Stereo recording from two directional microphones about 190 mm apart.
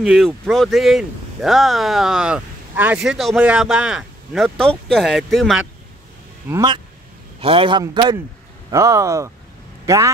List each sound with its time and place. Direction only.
0.0 s speech: centre (ahead or behind)
6.5 s a man's voice: 20° right (ahead or behind)